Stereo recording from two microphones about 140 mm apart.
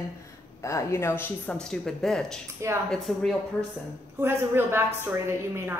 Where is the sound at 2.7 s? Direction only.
20° right (ahead or behind).